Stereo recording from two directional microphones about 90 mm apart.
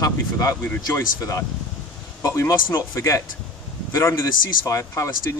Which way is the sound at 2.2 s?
35° left (ahead or behind).